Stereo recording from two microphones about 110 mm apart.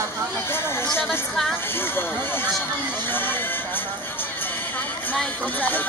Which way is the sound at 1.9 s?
20° left (ahead or behind).